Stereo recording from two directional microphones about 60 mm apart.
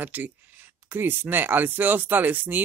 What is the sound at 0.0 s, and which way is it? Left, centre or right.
Speech, right.